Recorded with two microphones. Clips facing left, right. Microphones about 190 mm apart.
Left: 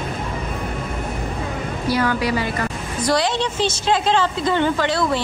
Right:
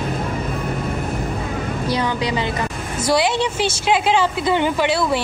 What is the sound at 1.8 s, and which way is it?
Speech, 20° right (ahead or behind).